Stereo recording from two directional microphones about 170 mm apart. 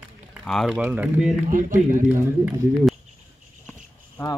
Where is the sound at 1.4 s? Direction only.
50° right (ahead or behind).